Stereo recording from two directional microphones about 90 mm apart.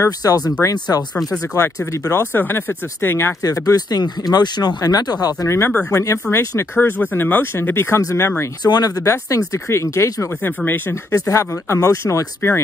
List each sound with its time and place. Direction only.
0.0 s speech: 45° left (ahead or behind); by 3.3 s 25° left (ahead or behind)
3.4 s speech: 40° left (ahead or behind)
5.5 s speech: 30° left (ahead or behind)
8.6 s speech: 45° left (ahead or behind)
10.4 s speech: 25° left (ahead or behind)